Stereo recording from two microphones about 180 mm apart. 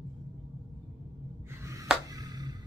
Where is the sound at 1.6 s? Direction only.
15° right (ahead or behind).